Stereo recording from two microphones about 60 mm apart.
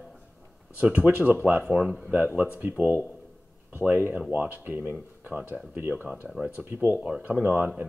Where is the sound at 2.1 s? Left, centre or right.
Right.